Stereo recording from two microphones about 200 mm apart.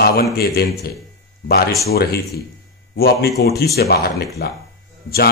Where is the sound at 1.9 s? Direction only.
50° left (ahead or behind).